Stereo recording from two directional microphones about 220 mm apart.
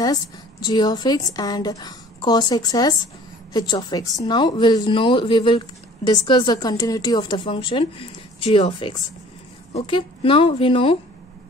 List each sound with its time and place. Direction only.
0.0 s speech: 20° left (ahead or behind)